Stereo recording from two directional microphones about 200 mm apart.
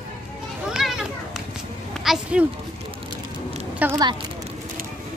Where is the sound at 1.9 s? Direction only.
Centre (ahead or behind).